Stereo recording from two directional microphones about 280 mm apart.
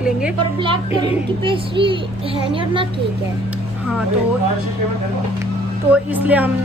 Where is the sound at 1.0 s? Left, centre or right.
Centre.